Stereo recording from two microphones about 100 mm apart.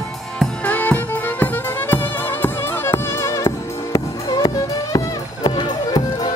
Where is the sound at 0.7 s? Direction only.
15° left (ahead or behind).